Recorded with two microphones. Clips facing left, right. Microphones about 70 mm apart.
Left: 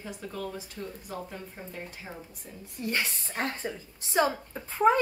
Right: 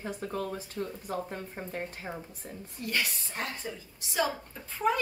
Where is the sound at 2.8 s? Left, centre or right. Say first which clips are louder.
Left 1 dB; left.